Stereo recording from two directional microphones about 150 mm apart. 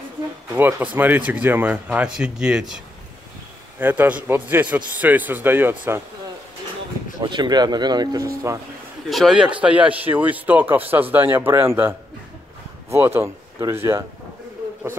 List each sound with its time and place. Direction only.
0.6 s speech: 15° right (ahead or behind)
3.8 s speech: 10° right (ahead or behind)
7.2 s speech: 30° right (ahead or behind)
9.1 s speech: centre (ahead or behind)
12.9 s speech: 15° right (ahead or behind)